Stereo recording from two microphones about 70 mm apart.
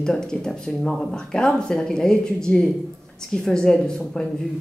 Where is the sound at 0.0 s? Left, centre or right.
Centre.